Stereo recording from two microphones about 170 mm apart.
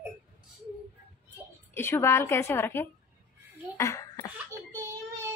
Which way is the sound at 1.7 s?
15° left (ahead or behind).